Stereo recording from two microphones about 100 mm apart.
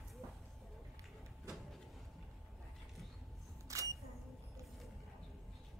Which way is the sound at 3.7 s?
35° right (ahead or behind).